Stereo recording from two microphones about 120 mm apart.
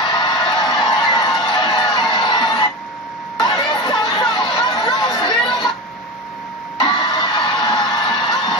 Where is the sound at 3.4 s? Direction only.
35° left (ahead or behind).